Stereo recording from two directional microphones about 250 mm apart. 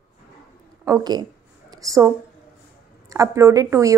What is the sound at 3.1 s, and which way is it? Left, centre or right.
Speech, centre.